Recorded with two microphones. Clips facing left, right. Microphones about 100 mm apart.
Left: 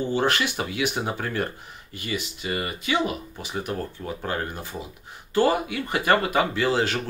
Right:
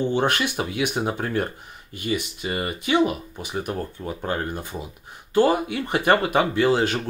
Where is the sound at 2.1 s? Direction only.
35° right (ahead or behind).